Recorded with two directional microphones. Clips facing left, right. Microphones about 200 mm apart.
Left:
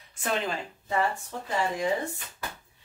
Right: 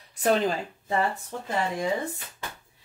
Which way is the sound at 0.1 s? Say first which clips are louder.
Right 6 dB; 40° right (ahead or behind).